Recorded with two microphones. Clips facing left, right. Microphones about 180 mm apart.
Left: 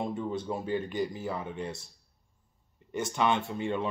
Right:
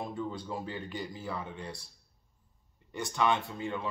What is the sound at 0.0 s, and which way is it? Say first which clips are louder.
Speech: left 4 dB; 25° left (ahead or behind).